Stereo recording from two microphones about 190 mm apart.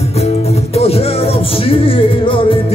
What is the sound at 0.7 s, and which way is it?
Music, 30° left (ahead or behind).